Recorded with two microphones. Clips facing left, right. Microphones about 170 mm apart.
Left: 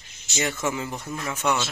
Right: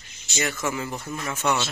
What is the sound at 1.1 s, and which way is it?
Speech, centre (ahead or behind).